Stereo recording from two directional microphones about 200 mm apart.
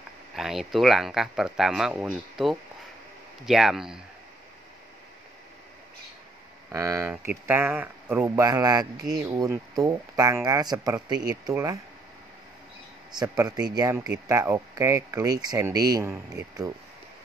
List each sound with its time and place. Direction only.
0.4 s speech: centre (ahead or behind)
6.7 s speech: 15° right (ahead or behind)
13.1 s speech: 20° right (ahead or behind)